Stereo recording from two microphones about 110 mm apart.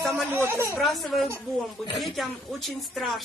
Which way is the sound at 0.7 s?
Centre (ahead or behind).